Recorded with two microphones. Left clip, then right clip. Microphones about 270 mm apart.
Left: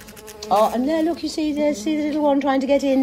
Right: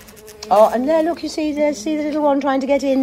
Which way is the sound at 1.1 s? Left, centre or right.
Centre.